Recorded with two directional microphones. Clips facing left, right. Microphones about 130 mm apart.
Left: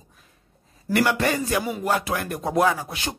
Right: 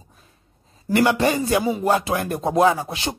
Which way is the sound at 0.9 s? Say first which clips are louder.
Right 3 dB; 20° right (ahead or behind).